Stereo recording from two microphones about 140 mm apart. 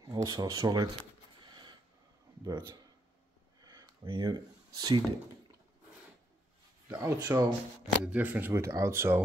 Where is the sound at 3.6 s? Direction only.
30° right (ahead or behind).